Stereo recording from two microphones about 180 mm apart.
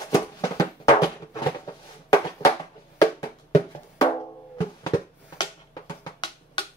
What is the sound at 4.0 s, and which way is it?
Music, 20° left (ahead or behind).